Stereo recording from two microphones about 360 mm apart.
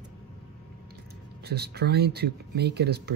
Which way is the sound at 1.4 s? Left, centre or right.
Right.